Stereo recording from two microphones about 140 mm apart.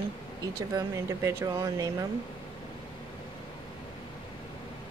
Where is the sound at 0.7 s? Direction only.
20° right (ahead or behind).